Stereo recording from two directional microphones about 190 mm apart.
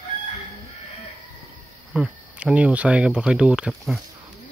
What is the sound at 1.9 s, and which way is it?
Speech, 5° right (ahead or behind).